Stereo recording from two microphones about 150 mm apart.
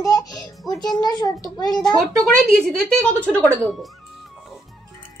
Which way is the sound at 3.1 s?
15° right (ahead or behind).